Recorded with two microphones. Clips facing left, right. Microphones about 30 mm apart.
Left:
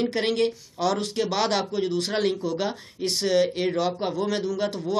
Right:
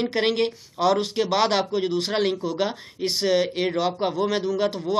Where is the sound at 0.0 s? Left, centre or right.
Centre.